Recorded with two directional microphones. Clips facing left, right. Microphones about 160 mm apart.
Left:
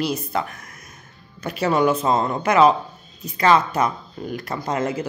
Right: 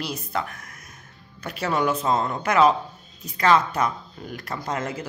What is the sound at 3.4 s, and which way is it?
Speech, 5° left (ahead or behind).